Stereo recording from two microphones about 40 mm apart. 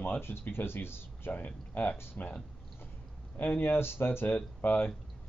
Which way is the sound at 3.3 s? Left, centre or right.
Left.